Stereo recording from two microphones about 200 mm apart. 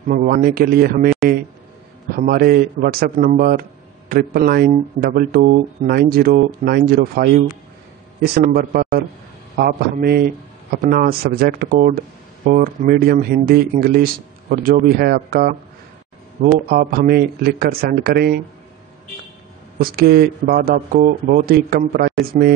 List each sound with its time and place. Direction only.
0.1 s speech: 45° right (ahead or behind)
16.6 s speech: 50° right (ahead or behind)
19.8 s speech: 50° right (ahead or behind)